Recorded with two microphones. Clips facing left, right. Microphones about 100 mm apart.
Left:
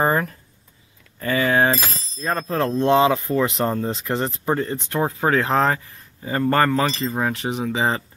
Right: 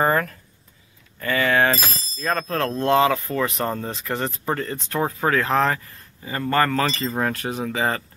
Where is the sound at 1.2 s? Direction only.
30° left (ahead or behind).